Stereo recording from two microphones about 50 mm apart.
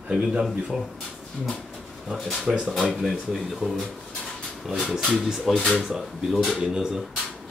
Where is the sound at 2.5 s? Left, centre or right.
Centre.